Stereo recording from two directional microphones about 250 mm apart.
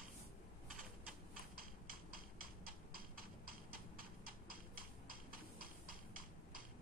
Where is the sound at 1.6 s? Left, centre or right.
Right.